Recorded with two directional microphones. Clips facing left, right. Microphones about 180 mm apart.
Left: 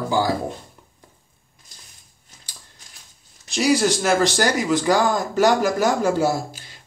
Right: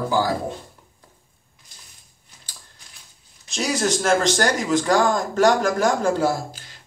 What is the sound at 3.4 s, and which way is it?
Speech, 5° left (ahead or behind).